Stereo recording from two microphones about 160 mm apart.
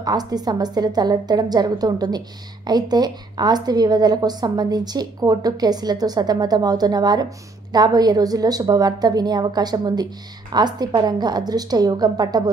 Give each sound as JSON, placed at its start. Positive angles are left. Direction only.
{"t": 0.0, "sound": "a woman's voice", "side_deg": -25}